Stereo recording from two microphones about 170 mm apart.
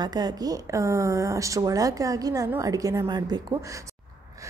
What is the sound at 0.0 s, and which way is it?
A woman's voice, 25° right (ahead or behind).